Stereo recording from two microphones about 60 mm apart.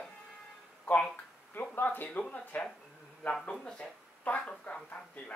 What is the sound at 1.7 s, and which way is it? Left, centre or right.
Speech, left.